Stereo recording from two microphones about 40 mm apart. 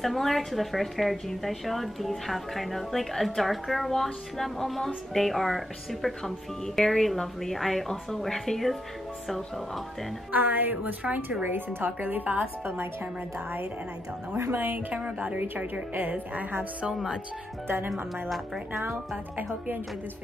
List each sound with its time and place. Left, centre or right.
0.0 s a woman's voice: centre
10.3 s speech: right
11.4 s speech: right
14.3 s speech: right
15.0 s a woman's voice: right
15.5 s speech: right
17.6 s speech: right